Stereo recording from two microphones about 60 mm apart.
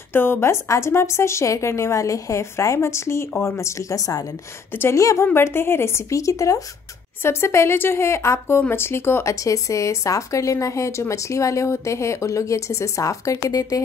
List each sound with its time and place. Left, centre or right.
0.1 s a woman's voice: left
5.2 s a woman's voice: left
7.2 s a woman's voice: left
8.5 s speech: left
9.2 s a woman's voice: left